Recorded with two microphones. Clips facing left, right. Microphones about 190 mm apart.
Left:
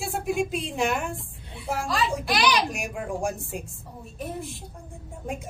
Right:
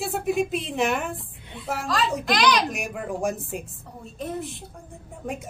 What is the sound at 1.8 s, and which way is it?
Speech, 10° left (ahead or behind).